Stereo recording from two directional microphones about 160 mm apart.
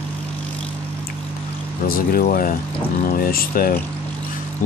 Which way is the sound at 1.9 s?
60° left (ahead or behind).